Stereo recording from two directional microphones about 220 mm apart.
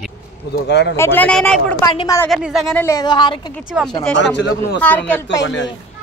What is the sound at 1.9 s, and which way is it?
Speech, 15° left (ahead or behind).